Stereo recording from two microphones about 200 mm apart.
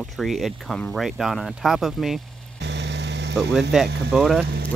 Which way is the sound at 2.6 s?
60° right (ahead or behind).